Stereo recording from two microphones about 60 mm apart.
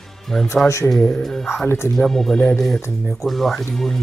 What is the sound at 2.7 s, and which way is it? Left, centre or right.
Speech, left.